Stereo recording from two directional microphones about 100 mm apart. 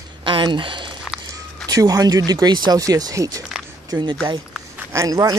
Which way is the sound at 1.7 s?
35° right (ahead or behind).